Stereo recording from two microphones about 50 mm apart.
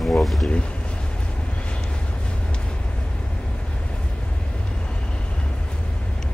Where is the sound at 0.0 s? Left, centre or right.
Centre.